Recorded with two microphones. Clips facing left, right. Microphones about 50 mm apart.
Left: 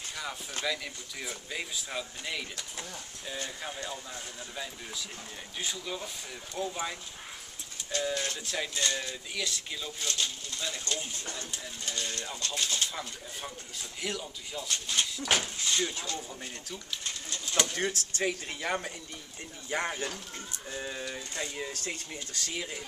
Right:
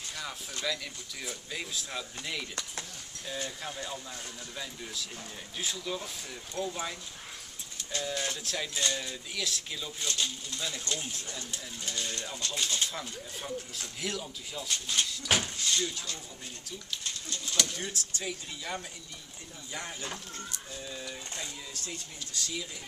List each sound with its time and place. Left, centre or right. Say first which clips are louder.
0.1 s a sound: left 2 dB; centre
0.6 s speech: left 1 dB; centre
17.7 s speech: left 6 dB; left